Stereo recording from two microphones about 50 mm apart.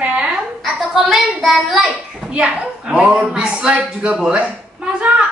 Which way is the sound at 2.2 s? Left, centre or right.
Centre.